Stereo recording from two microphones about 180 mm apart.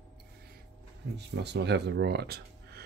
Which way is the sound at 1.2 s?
70° right (ahead or behind).